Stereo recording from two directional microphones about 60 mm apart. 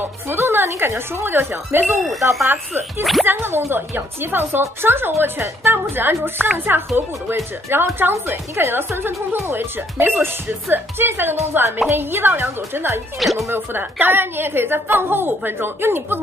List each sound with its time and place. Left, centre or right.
0.3 s a woman's voice: right
3.0 s speech: centre
3.3 s a woman's voice: right
7.7 s a woman's voice: right
13.2 s speech: centre
13.5 s a woman's voice: right